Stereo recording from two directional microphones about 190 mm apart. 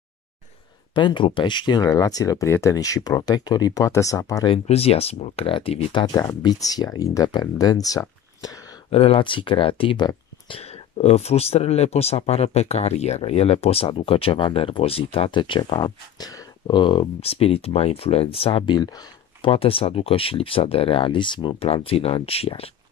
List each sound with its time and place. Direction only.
0.9 s speech: 25° left (ahead or behind)
4.6 s speech: 30° left (ahead or behind)
8.9 s speech: 30° left (ahead or behind)
19.5 s speech: 30° left (ahead or behind)